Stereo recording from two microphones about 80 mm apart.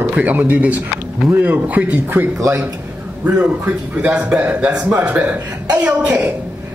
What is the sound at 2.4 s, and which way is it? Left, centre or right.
Speech, right.